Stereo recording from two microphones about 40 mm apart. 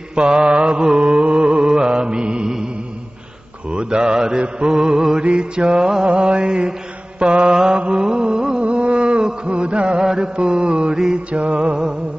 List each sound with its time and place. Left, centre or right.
0.1 s mantra: right
3.7 s mantra: centre
6.0 s mantra: right
7.5 s mantra: centre
8.1 s music: right
8.6 s a sound: right
9.5 s music: right
10.0 s mantra: centre
11.3 s mantra: right